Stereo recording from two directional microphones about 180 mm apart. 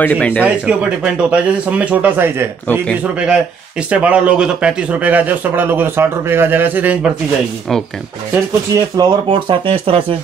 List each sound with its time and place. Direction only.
0.0 s speech: 10° left (ahead or behind)
0.7 s a man's voice: 5° right (ahead or behind)
8.9 s speech: 25° right (ahead or behind)